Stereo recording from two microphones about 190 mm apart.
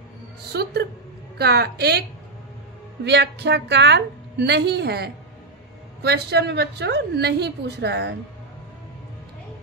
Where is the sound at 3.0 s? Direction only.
60° right (ahead or behind).